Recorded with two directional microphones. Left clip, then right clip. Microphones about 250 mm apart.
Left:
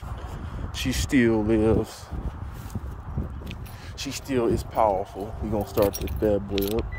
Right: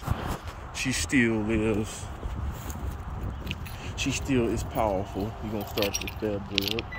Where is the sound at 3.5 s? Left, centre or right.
Centre.